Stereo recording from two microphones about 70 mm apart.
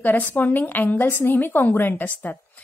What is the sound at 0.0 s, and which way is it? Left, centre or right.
A woman's voice, left.